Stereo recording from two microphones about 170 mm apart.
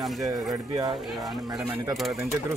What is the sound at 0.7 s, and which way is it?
Speech, 20° right (ahead or behind).